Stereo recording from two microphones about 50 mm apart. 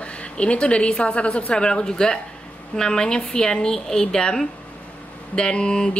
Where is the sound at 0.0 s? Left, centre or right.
Left.